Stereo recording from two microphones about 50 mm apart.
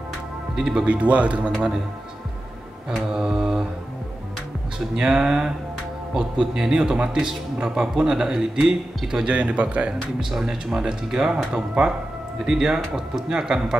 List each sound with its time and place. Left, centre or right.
0.6 s a man's voice: centre
0.8 s speech: right
3.0 s a man's voice: centre
4.7 s a man's voice: centre
9.3 s speech: right
9.8 s a man's voice: centre